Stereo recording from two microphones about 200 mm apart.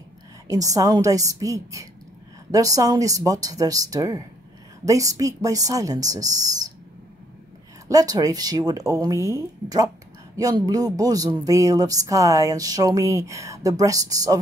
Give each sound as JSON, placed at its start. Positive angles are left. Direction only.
{"t": 0.5, "sound": "speech", "side_deg": -15}
{"t": 7.9, "sound": "speech", "side_deg": -20}